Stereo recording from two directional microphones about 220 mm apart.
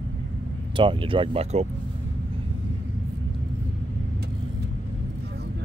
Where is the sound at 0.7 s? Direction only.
25° right (ahead or behind).